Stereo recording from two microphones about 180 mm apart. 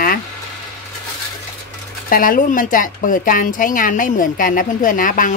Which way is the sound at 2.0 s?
50° left (ahead or behind).